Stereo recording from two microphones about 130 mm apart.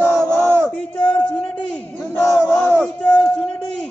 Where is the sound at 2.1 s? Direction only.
20° left (ahead or behind).